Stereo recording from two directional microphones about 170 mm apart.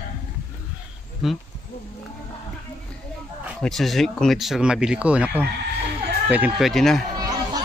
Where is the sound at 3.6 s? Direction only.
Centre (ahead or behind).